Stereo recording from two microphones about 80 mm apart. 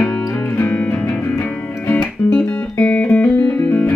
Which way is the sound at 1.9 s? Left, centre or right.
Left.